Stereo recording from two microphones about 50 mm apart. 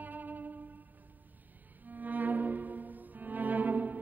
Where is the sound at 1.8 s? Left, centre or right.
Right.